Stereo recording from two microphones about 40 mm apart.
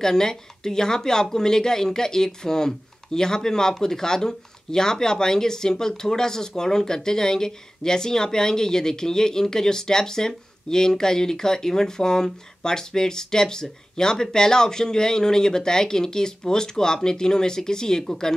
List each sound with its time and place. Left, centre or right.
0.0 s speech: centre